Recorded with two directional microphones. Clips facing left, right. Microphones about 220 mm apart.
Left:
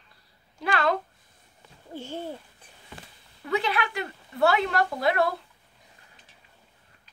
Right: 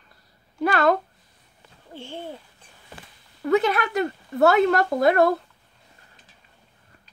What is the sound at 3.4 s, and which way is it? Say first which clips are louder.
A woman's voice: right 7 dB; 45° right (ahead or behind).